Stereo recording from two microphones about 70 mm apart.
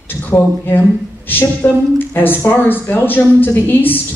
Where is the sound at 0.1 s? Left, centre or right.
Left.